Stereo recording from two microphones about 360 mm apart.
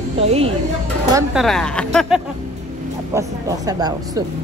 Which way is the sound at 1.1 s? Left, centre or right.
Centre.